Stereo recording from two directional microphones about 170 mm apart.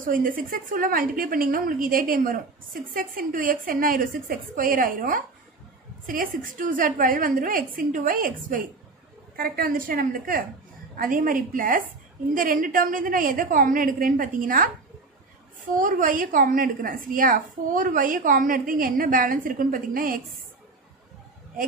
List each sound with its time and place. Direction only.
0.0 s a woman's voice: 55° right (ahead or behind)
15.8 s a woman's voice: 50° right (ahead or behind)